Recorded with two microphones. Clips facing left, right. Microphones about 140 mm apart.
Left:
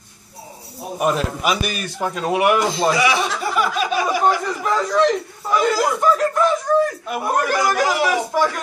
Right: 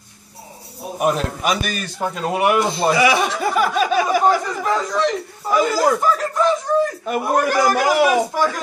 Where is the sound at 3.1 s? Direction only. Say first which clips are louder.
Right 2 dB; 50° right (ahead or behind).